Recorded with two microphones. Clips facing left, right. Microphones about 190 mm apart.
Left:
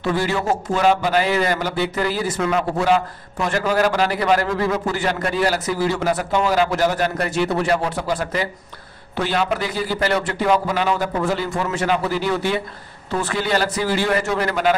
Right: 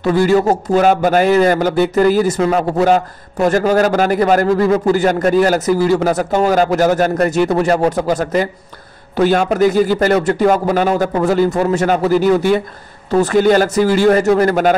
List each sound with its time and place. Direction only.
0.0 s speech: 45° right (ahead or behind)